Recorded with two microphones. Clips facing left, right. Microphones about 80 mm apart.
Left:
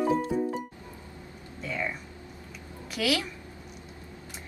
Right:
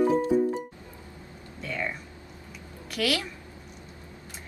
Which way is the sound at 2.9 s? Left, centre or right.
Centre.